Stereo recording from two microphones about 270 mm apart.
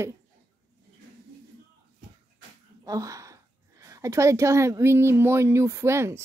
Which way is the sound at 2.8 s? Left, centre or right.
Centre.